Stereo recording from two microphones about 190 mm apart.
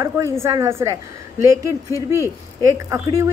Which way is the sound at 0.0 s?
15° right (ahead or behind).